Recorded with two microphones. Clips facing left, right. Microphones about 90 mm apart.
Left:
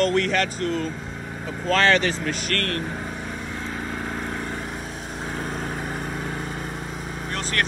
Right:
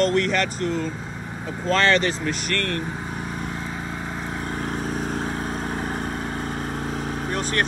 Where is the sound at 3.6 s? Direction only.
10° right (ahead or behind).